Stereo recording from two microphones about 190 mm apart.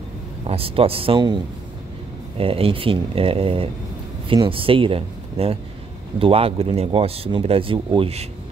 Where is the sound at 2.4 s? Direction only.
30° right (ahead or behind).